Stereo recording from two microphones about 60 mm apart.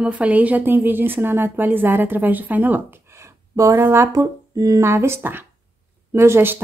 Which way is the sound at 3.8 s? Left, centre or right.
Right.